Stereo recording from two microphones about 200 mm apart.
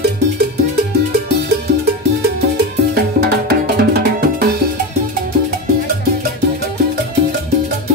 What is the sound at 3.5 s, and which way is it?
Music, 50° right (ahead or behind).